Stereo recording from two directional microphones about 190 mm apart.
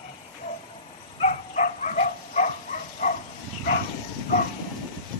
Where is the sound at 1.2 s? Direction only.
40° left (ahead or behind).